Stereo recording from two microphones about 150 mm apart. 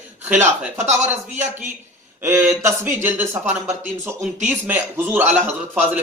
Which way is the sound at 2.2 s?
15° right (ahead or behind).